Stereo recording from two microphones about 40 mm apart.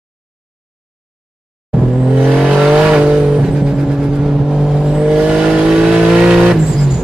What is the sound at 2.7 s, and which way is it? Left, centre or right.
Vehicle, centre.